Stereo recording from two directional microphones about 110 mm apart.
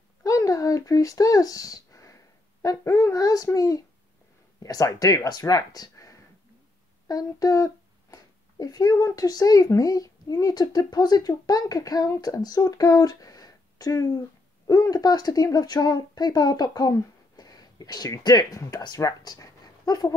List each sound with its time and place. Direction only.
0.2 s a child's voice: 30° left (ahead or behind)